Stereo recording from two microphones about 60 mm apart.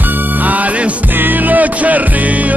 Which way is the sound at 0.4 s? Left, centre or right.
Right.